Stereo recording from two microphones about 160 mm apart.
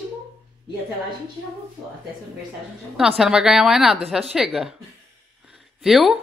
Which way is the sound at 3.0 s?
5° right (ahead or behind).